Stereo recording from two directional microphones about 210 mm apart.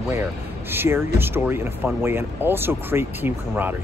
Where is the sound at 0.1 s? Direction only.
10° right (ahead or behind).